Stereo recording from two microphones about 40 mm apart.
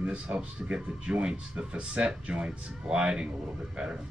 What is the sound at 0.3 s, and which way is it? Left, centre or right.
Speech, right.